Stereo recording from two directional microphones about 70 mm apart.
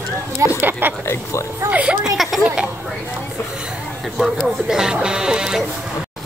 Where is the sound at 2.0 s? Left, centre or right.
Centre.